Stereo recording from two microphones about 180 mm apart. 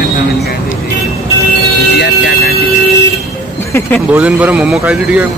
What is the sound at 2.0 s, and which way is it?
Vehicle, 60° left (ahead or behind).